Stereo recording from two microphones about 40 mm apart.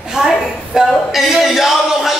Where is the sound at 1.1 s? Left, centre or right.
Centre.